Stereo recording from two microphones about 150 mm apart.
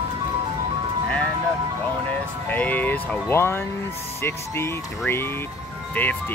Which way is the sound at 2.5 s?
10° left (ahead or behind).